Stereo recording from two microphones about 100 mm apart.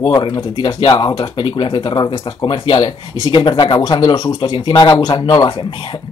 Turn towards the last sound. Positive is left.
turn(degrees=55)  # may be behind; listen again after turning